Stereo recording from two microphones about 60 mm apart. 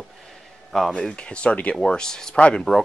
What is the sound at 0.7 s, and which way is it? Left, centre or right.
Speech, centre.